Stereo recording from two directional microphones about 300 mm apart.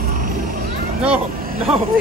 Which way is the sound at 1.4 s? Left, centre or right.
Right.